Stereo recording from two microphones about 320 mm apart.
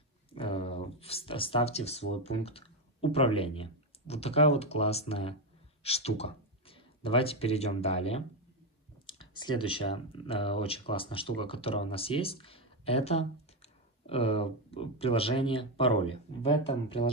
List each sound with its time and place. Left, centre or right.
0.3 s speech: centre